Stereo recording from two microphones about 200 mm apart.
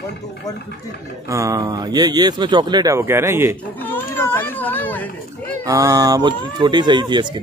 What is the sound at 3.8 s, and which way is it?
Children playing, 10° left (ahead or behind).